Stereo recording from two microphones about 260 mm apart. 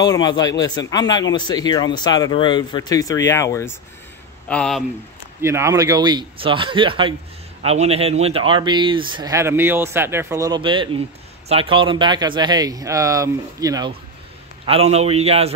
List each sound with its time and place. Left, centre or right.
0.0 s speech: centre
5.4 s a man's voice: centre